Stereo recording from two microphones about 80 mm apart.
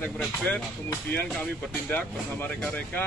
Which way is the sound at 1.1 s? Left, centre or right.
Centre.